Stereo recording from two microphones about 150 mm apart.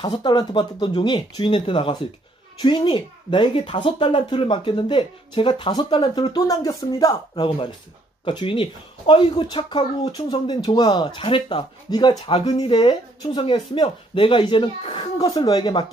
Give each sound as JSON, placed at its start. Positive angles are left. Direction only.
{"t": 0.0, "sound": "speech", "side_deg": 30}
{"t": 7.4, "sound": "speech", "side_deg": 35}
{"t": 15.1, "sound": "speech", "side_deg": 25}